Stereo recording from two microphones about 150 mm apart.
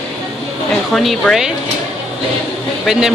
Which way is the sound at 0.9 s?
Centre (ahead or behind).